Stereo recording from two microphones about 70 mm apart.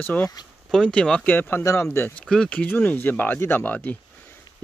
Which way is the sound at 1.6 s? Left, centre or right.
Left.